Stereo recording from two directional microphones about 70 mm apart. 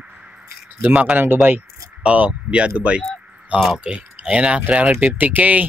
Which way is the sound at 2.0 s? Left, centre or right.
Centre.